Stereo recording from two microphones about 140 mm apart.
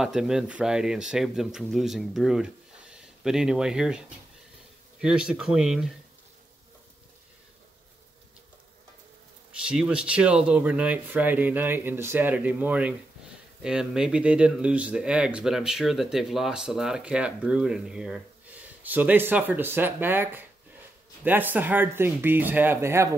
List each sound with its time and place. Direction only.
0.0 s speech: 5° right (ahead or behind)
5.0 s speech: 5° right (ahead or behind)
9.7 s speech: 5° right (ahead or behind)